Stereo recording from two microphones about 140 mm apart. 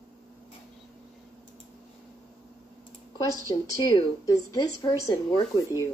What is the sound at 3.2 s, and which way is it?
A woman's voice, 25° left (ahead or behind).